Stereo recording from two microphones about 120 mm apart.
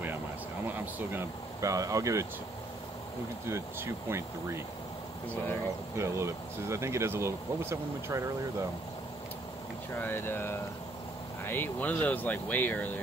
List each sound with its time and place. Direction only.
0.7 s speech: 15° right (ahead or behind)
3.4 s speech: 20° right (ahead or behind)
5.9 s speech: 25° right (ahead or behind)
9.9 s speech: 15° left (ahead or behind)